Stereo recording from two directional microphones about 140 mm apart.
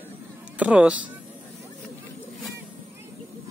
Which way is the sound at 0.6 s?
10° right (ahead or behind).